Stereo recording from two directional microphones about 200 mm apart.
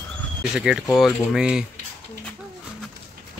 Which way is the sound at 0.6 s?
5° right (ahead or behind).